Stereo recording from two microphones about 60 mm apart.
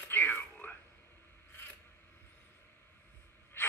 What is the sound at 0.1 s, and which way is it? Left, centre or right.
Whispering, left.